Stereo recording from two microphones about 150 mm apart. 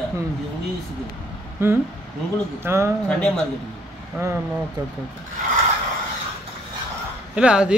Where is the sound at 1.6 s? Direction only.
15° right (ahead or behind).